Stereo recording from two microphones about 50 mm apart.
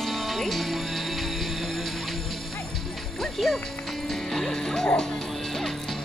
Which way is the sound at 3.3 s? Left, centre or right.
Centre.